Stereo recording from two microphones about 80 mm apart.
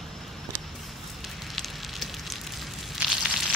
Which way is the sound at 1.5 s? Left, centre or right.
Centre.